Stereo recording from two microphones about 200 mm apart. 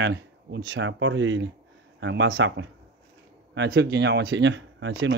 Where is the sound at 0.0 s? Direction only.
65° right (ahead or behind).